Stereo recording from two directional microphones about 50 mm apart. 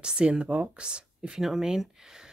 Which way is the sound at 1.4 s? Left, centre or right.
Centre.